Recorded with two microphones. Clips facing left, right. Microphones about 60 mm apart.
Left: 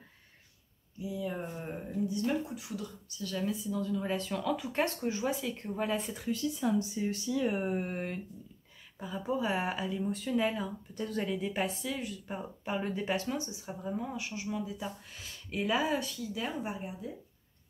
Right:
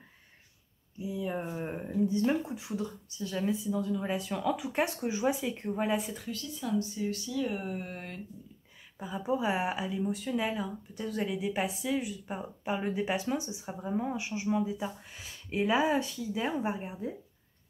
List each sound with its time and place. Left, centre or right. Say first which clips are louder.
1.0 s speech: right 2 dB; right
6.3 s speech: left 3 dB; left
8.9 s speech: right 2 dB; centre; by 17.1 s right